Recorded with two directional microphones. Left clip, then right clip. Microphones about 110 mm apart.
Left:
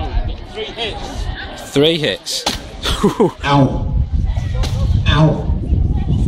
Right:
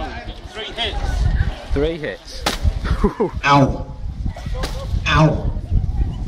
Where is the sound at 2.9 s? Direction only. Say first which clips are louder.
Left 6 dB; 25° left (ahead or behind).